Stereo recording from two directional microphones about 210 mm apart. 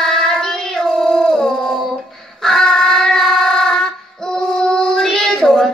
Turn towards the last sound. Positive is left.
turn(degrees=0)  # may be behind; listen again after turning